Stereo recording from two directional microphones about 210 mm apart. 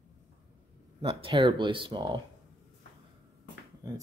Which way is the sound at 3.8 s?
20° right (ahead or behind).